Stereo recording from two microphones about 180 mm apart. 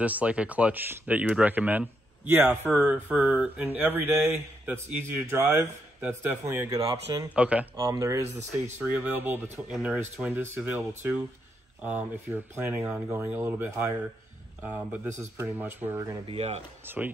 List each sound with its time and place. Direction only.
0.0 s speech: 10° right (ahead or behind)
7.3 s speech: 10° right (ahead or behind)
7.7 s speech: 20° right (ahead or behind)
8.4 s speech: 40° right (ahead or behind)
8.7 s speech: 10° right (ahead or behind)
16.3 s speech: 35° right (ahead or behind)
16.8 s speech: 10° right (ahead or behind)